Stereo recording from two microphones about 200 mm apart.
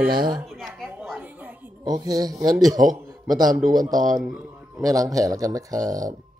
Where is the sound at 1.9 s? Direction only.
20° right (ahead or behind).